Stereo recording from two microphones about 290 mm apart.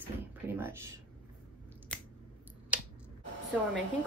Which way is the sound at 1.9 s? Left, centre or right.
Centre.